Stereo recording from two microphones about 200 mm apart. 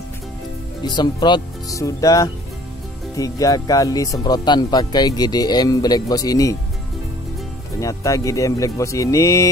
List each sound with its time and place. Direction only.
0.8 s speech: 20° left (ahead or behind)
7.8 s speech: 15° left (ahead or behind)